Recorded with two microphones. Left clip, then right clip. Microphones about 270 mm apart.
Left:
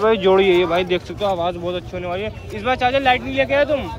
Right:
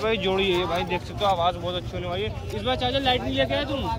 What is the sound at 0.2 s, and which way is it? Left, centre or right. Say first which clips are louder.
Speech: left 9 dB; centre.